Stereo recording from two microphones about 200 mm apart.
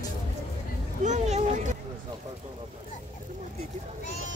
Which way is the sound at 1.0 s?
35° right (ahead or behind).